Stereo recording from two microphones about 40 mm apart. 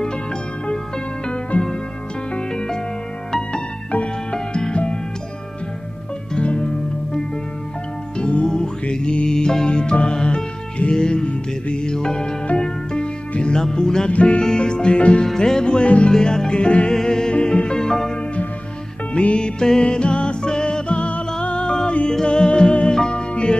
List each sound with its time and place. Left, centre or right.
1.5 s music: left
3.3 s music: centre
3.9 s music: left
6.3 s music: left
8.2 s music: left
14.1 s music: left
14.4 s music: centre
15.2 s music: centre
16.1 s music: centre
16.9 s music: centre
19.1 s music: left